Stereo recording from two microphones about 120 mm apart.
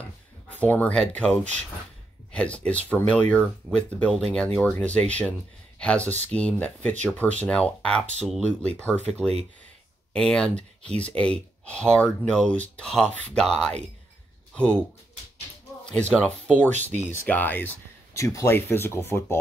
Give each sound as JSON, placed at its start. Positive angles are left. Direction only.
{"t": 0.5, "sound": "speech", "side_deg": 15}
{"t": 10.1, "sound": "speech", "side_deg": 5}
{"t": 15.8, "sound": "speech", "side_deg": 10}